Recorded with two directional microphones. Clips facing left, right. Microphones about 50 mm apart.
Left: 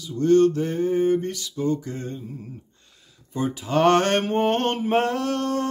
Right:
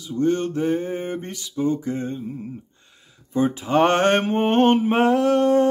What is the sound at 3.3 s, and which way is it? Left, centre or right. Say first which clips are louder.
Mantra: right 4 dB; right.